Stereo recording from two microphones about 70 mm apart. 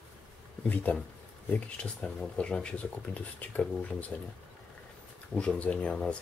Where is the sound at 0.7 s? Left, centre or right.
Left.